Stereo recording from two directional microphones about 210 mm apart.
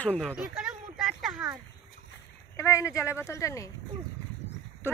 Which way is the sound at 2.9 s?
5° right (ahead or behind).